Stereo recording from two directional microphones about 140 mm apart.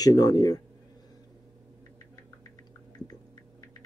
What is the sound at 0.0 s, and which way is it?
Speech, 25° left (ahead or behind).